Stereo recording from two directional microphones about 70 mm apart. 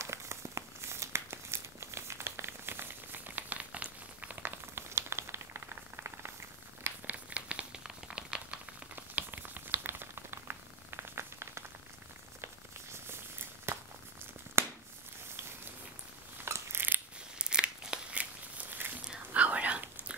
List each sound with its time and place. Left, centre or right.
0.0 s crumpling: right
7.2 s a sound: centre
8.9 s boiling: right
13.7 s crumpling: right
14.6 s a sound: right
16.4 s crunch: right
17.4 s crumpling: centre
19.0 s whispering: centre